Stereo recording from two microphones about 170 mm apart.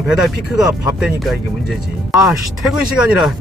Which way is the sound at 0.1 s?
5° right (ahead or behind).